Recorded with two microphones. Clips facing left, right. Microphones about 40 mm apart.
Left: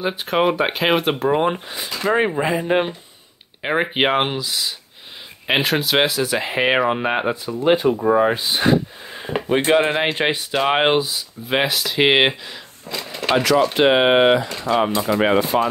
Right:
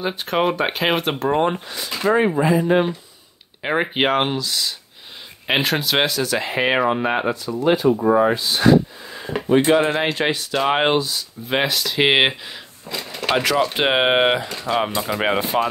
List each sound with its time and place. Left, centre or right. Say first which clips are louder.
0.0 s speech: left 1 dB; centre
3.6 s speech: left 1 dB; centre
7.6 s speech: even; left; by 13.0 s centre
13.0 s a sound: left 2 dB; centre
13.7 s speech: left 3 dB; centre